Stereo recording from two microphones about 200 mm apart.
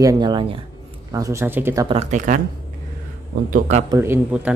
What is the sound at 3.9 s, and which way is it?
Speech, 10° right (ahead or behind).